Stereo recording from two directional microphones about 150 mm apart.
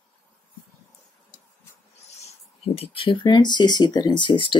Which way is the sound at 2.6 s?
40° left (ahead or behind).